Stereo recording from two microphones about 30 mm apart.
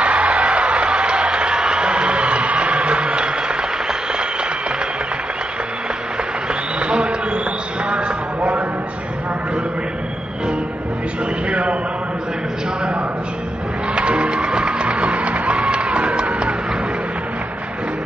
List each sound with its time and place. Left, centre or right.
0.0 s music: right
2.0 s applause: right
6.8 s basketball bounce: right
7.9 s a sound: right
11.4 s a sound: right
13.9 s music: right
14.4 s music: right
14.7 s music: right
15.0 s run: right